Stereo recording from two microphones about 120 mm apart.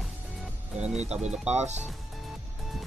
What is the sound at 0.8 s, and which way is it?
Speech, 65° right (ahead or behind).